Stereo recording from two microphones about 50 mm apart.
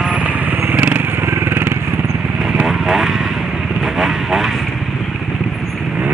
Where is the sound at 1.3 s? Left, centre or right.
Right.